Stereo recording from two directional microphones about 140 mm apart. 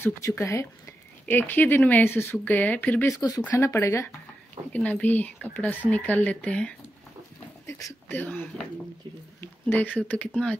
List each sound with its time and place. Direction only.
0.0 s speech: 15° left (ahead or behind)
3.2 s speech: 25° left (ahead or behind); by 6.7 s 10° left (ahead or behind)
7.6 s speech: 20° left (ahead or behind)